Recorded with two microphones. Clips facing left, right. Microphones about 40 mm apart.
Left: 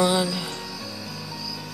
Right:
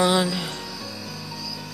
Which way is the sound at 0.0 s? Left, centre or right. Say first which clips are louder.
Right 1 dB; right.